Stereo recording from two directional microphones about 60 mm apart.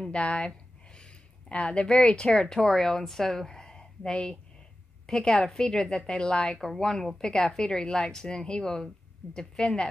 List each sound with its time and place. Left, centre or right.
0.1 s a woman's voice: centre
1.5 s a woman's voice: centre